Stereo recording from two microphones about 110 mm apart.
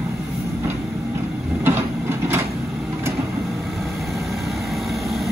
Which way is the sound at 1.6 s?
20° right (ahead or behind).